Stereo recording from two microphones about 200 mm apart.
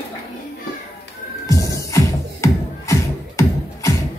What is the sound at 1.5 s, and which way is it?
Music, 15° left (ahead or behind).